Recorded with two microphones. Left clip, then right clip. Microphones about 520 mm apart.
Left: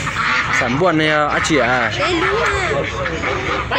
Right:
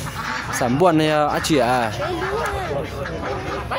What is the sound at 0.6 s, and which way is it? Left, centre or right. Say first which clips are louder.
Speech: left 2 dB; right.